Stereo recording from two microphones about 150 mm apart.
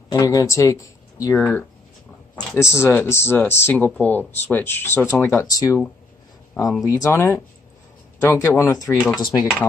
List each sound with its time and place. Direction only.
0.1 s speech: 20° left (ahead or behind)
2.6 s speech: 20° left (ahead or behind)
6.8 s speech: 20° left (ahead or behind)